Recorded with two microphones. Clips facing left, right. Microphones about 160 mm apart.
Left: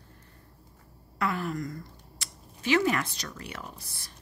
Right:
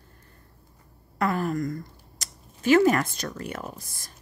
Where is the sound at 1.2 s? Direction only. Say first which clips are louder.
Right 5 dB; 45° right (ahead or behind).